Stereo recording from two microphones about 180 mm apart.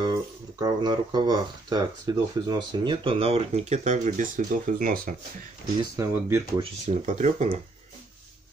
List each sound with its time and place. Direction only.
0.6 s speech: 25° right (ahead or behind); by 5.1 s 50° right (ahead or behind)
5.8 s speech: 15° right (ahead or behind)
6.6 s speech: 40° right (ahead or behind)